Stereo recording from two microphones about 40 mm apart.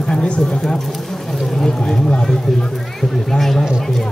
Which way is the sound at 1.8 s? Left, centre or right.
Centre.